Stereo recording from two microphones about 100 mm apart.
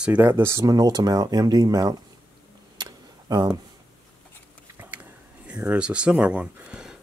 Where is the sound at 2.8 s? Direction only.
45° right (ahead or behind).